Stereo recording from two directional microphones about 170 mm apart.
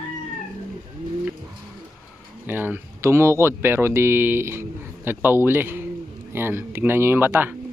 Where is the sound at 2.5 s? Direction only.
10° right (ahead or behind).